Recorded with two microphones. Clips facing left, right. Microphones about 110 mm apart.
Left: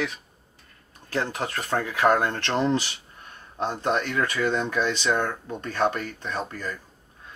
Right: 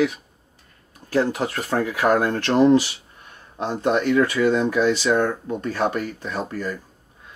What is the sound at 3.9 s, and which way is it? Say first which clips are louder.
Speech: right 8 dB; 25° right (ahead or behind).